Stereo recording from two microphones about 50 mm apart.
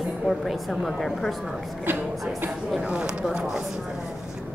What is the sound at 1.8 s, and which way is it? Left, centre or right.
Speech, right.